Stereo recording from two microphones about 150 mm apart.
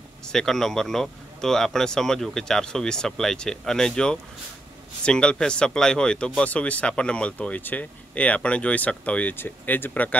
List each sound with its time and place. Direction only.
0.3 s speech: 5° left (ahead or behind)